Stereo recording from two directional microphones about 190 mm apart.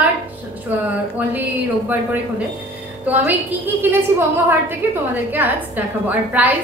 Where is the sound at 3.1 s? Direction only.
10° right (ahead or behind).